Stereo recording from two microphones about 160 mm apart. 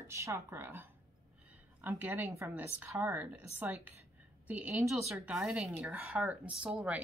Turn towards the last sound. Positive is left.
turn(degrees=-5)  # may be behind; listen again after turning